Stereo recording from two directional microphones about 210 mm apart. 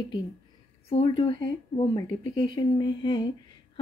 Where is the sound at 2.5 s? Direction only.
20° left (ahead or behind).